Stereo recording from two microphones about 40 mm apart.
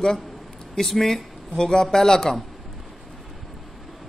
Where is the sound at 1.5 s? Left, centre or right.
Centre.